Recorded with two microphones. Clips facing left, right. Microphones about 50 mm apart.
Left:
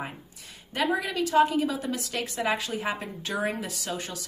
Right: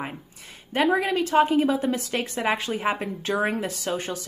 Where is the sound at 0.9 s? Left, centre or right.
Right.